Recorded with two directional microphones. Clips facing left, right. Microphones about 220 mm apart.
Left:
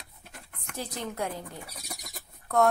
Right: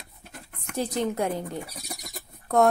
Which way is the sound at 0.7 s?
20° right (ahead or behind).